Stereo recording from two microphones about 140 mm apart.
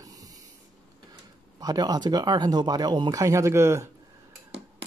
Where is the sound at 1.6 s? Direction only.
25° right (ahead or behind).